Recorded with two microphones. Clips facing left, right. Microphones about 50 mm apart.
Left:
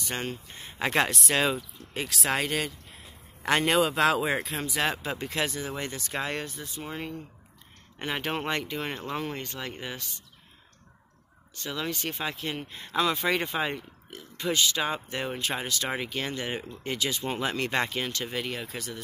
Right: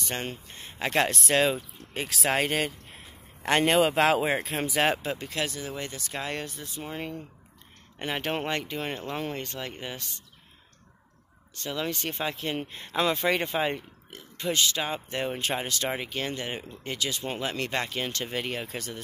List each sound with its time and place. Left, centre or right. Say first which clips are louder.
0.0 s speech: even; centre
2.4 s speech: right 2 dB; right
3.4 s speech: right 1 dB; centre
3.8 s speech: right 1 dB; right
4.6 s speech: right 3 dB; right
5.0 s speech: left 1 dB; centre
6.8 s speech: right 1 dB; centre
8.3 s speech: even; centre
9.4 s speech: right 1 dB; centre
9.7 s speech: even; centre
11.9 s speech: right 1 dB; centre
14.5 s speech: left 1 dB; centre
18.2 s speech: right 1 dB; centre